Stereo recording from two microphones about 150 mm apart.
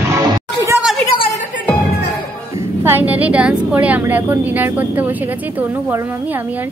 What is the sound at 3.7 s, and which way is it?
A woman's voice, 10° right (ahead or behind).